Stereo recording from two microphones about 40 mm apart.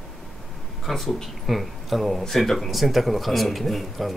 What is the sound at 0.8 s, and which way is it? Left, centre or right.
Speech, centre.